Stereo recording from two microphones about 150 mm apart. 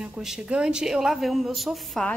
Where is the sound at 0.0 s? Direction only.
5° right (ahead or behind).